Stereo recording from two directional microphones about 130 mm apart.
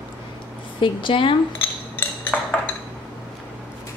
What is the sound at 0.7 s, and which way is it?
Speech, 40° left (ahead or behind).